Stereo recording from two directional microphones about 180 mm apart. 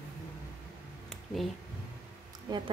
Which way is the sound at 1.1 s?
Centre (ahead or behind).